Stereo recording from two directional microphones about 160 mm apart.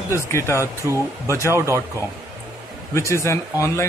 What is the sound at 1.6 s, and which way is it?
Speech, 15° right (ahead or behind).